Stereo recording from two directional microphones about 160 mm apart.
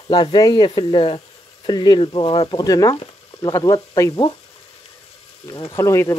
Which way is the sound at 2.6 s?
20° left (ahead or behind).